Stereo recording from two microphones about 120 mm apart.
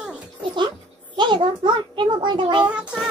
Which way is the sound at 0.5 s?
40° right (ahead or behind).